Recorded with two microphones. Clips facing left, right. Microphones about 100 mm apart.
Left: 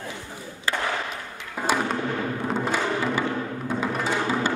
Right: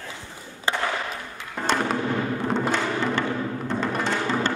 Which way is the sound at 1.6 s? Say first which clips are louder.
Right 1 dB; 5° left (ahead or behind).